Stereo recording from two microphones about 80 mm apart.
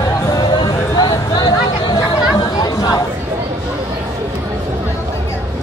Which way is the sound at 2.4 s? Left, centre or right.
Left.